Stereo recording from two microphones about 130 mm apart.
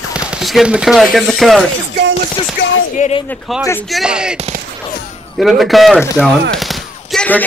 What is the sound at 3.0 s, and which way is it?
Speech, 65° left (ahead or behind).